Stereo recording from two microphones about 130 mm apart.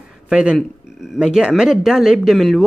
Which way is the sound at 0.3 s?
5° right (ahead or behind).